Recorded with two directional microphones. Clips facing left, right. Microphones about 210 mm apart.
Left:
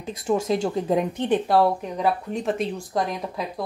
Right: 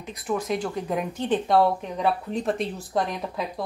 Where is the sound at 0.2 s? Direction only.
25° left (ahead or behind).